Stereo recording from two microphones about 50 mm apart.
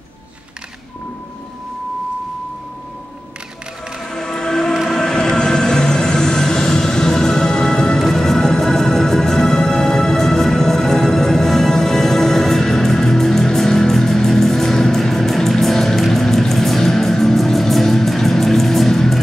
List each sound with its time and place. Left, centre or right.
4.1 s music: centre